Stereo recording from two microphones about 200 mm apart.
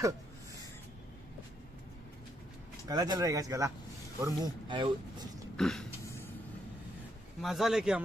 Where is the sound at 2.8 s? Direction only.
20° right (ahead or behind).